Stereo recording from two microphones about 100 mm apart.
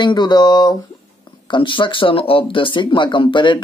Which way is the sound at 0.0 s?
50° left (ahead or behind).